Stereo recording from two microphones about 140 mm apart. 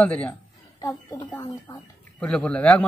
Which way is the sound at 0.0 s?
10° left (ahead or behind).